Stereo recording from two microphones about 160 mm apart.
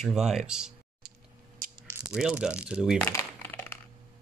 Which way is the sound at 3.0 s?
15° left (ahead or behind).